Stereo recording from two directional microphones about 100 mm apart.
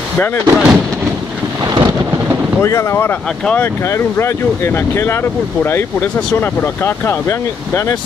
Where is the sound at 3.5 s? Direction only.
25° left (ahead or behind).